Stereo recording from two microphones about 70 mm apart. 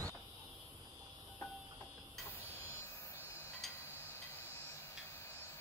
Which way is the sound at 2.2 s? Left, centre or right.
Left.